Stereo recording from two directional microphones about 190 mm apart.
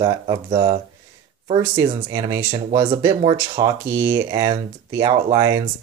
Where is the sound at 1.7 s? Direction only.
20° right (ahead or behind).